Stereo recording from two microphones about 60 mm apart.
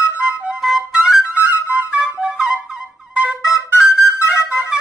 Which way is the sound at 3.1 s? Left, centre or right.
Right.